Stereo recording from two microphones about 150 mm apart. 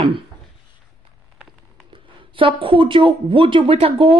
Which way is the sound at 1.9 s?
35° right (ahead or behind).